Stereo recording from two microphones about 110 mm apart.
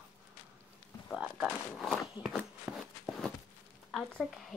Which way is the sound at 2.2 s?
Centre (ahead or behind).